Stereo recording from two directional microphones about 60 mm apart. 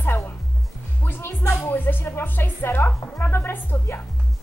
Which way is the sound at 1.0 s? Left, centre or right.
Left.